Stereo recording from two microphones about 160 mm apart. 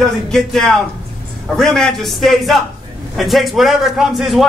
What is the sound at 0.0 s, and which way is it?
A man's voice, 5° left (ahead or behind).